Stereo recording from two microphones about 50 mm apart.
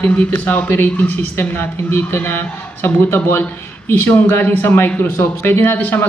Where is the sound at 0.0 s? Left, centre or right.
Left.